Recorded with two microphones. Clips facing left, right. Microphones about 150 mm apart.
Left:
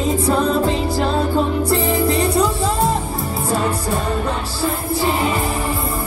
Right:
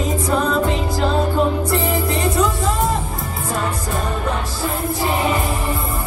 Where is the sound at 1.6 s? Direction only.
35° left (ahead or behind).